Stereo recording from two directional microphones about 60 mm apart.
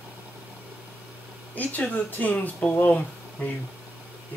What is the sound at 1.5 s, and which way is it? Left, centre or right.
Speech, left.